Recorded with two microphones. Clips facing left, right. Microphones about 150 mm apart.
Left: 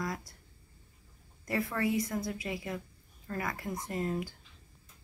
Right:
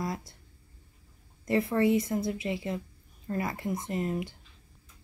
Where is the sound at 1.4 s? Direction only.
25° right (ahead or behind).